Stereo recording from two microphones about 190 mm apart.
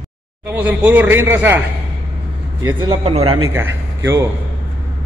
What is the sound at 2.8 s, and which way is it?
Speech, 30° right (ahead or behind).